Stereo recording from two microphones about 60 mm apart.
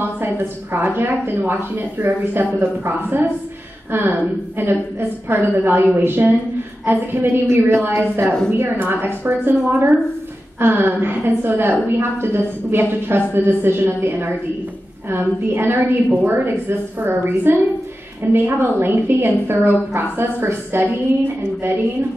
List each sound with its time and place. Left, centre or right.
0.4 s a woman's voice: right
7.8 s a woman's voice: right